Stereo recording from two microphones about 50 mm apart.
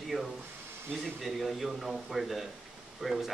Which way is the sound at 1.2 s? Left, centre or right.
Centre.